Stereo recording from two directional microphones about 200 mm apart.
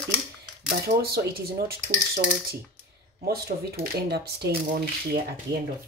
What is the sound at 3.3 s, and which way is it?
A woman's voice, 50° right (ahead or behind).